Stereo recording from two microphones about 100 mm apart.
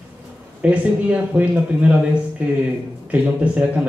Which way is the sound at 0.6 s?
15° right (ahead or behind).